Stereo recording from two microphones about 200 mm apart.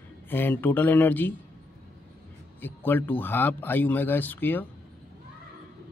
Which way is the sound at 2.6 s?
10° left (ahead or behind).